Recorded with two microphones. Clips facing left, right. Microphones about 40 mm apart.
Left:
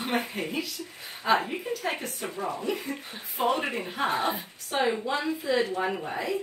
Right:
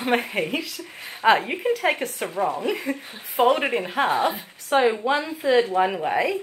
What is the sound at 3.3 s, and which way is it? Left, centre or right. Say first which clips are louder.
Speech: right 7 dB; right.